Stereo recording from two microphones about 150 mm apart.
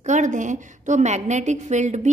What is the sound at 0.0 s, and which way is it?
A woman's voice, 55° right (ahead or behind).